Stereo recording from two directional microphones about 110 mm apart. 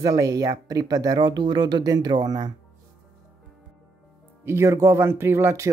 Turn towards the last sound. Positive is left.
turn(degrees=-25)  # may be behind; listen again after turning